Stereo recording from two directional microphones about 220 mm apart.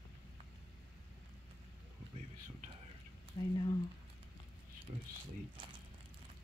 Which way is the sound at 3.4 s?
15° left (ahead or behind).